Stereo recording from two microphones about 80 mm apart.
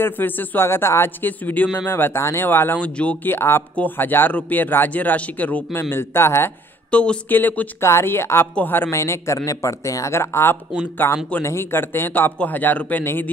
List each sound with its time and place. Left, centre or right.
0.0 s speech: left
3.3 s speech: left
6.9 s speech: centre
8.9 s speech: left